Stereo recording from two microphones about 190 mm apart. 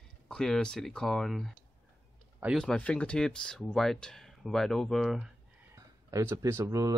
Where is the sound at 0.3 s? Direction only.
5° left (ahead or behind).